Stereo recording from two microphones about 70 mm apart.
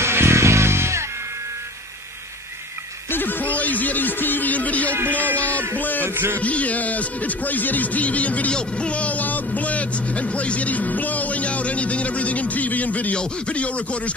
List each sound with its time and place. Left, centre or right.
0.0 s music: right
3.1 s music: left
4.9 s speech: right
5.8 s speech: left
6.0 s speech: right
6.4 s speech: left